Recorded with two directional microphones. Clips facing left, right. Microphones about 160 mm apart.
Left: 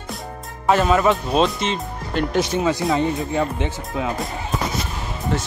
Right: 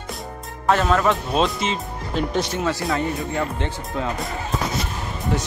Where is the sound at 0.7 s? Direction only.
5° left (ahead or behind).